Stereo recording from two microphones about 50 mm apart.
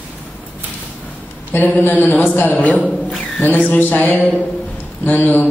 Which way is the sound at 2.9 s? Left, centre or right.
Centre.